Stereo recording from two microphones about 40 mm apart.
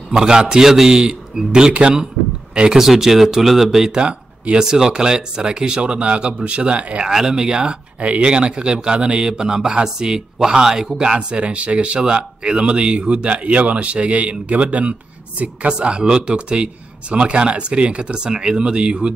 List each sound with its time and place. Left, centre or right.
0.1 s a man's voice: centre
2.7 s a man's voice: centre
3.9 s a man's voice: right
7.1 s a man's voice: centre